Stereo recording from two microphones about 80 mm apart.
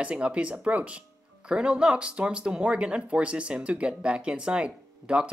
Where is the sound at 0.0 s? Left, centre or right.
Centre.